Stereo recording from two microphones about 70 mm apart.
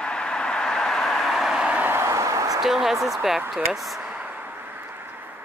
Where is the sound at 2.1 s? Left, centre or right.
Right.